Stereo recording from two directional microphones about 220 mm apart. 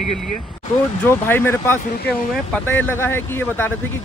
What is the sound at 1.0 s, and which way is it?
Speech, 10° left (ahead or behind).